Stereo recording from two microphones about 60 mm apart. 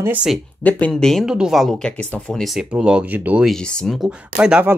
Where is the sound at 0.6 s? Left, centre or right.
Left.